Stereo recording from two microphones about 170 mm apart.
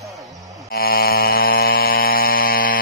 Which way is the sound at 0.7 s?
60° left (ahead or behind).